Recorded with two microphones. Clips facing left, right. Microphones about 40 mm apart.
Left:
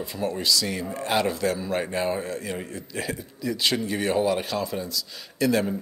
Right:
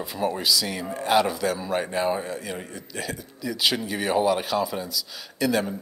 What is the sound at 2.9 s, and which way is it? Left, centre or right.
Speech, centre.